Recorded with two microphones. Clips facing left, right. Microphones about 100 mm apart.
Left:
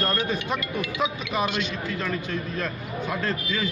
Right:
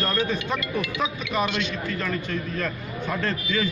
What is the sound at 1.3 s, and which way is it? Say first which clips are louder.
Speech: right 1 dB; 5° left (ahead or behind).